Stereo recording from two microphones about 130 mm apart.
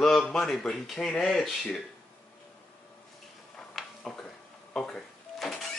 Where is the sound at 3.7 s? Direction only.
5° left (ahead or behind).